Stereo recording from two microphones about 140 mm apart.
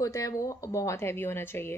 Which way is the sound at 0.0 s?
25° left (ahead or behind).